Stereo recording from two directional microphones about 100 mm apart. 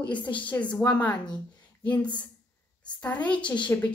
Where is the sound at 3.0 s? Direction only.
15° left (ahead or behind).